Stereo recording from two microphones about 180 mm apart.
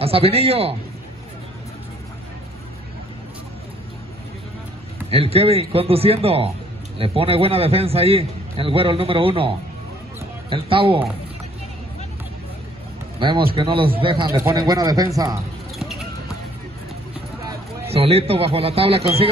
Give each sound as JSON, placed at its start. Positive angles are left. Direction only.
{"t": 0.0, "sound": "a man's voice", "side_deg": -35}
{"t": 5.1, "sound": "a man's voice", "side_deg": -35}
{"t": 13.2, "sound": "speech", "side_deg": -25}
{"t": 14.3, "sound": "speech", "side_deg": -20}
{"t": 15.8, "sound": "horse", "side_deg": 0}
{"t": 17.8, "sound": "a man's voice", "side_deg": -35}